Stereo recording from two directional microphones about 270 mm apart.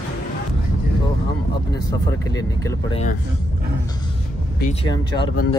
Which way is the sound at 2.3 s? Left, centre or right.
Centre.